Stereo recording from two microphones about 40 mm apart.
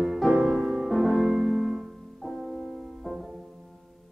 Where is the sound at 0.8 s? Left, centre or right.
Centre.